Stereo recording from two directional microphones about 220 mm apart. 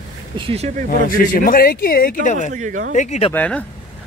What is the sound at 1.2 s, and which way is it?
Speech, 40° left (ahead or behind).